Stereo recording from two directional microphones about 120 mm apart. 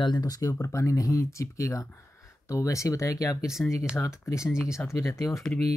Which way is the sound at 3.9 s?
25° left (ahead or behind).